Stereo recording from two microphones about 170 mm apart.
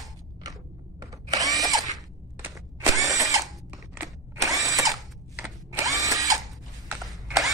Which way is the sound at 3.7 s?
15° right (ahead or behind).